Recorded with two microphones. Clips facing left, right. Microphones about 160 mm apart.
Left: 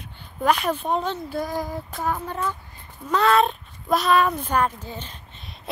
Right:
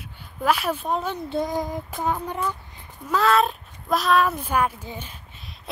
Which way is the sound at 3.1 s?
Centre (ahead or behind).